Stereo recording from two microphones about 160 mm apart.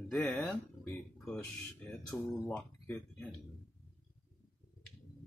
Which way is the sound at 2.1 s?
10° left (ahead or behind).